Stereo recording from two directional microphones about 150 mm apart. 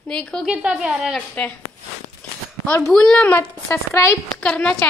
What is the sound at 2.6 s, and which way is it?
Speech, 15° left (ahead or behind).